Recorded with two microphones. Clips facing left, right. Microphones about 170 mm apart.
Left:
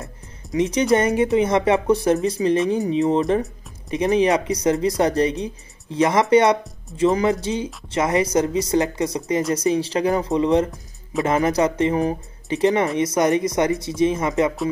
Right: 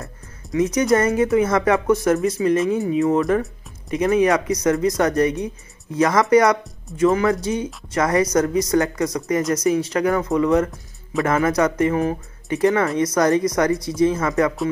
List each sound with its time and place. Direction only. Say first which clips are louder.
0.0 s speech: even; 25° left (ahead or behind)